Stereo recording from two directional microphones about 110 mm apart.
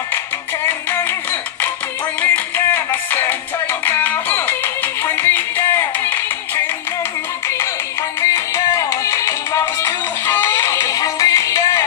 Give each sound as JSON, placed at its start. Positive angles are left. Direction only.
{"t": 0.7, "sound": "music", "side_deg": 20}
{"t": 8.2, "sound": "music", "side_deg": 30}